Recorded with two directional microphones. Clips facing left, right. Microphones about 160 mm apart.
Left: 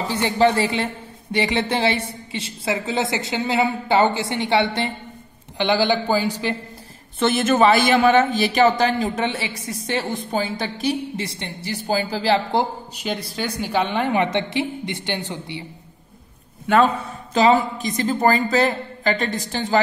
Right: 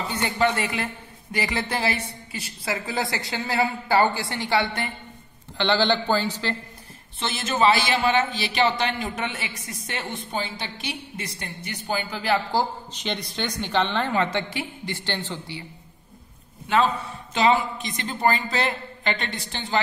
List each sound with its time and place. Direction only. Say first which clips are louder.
0.0 s speech: left 5 dB; 30° left (ahead or behind)
5.6 s a woman's voice: left 3 dB; 10° left (ahead or behind)
7.2 s a man's voice: left 7 dB; 55° left (ahead or behind)
11.2 s speech: left 5 dB; 25° left (ahead or behind)
12.9 s a woman's voice: left 3 dB; 5° left (ahead or behind)
17.3 s a woman's voice: left 4 dB; 40° left (ahead or behind)